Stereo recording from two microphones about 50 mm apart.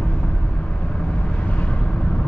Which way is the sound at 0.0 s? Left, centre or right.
Left.